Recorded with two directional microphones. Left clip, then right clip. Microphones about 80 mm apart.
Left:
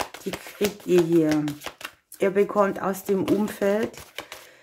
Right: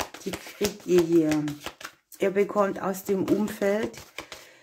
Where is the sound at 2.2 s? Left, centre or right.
Left.